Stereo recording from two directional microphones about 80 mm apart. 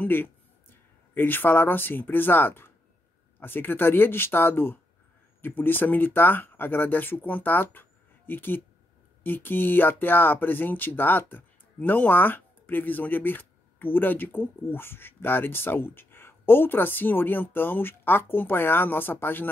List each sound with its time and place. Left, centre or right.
0.0 s speech: left